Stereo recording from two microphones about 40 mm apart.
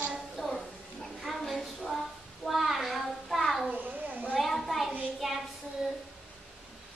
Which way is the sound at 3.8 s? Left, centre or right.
Right.